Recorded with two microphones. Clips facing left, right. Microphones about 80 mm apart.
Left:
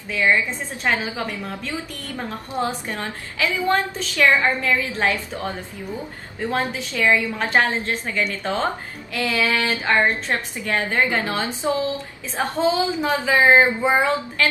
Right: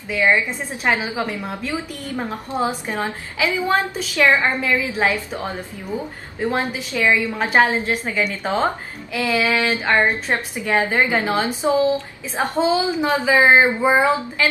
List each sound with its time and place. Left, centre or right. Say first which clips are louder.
0.8 s a woman's voice: right 2 dB; centre
7.3 s a woman's voice: right 3 dB; centre